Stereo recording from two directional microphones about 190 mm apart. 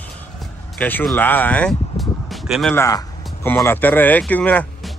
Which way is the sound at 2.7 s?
15° left (ahead or behind).